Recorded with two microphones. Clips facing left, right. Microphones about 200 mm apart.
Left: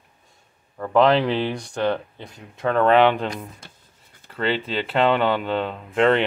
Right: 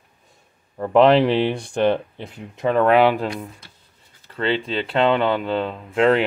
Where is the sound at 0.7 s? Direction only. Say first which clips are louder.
Right 3 dB; 20° right (ahead or behind).